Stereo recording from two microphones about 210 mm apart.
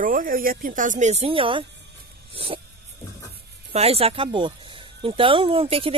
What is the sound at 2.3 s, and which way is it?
Dog, 25° right (ahead or behind).